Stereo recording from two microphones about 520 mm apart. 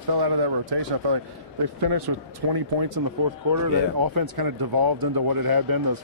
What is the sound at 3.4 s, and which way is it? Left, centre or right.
Speech, right.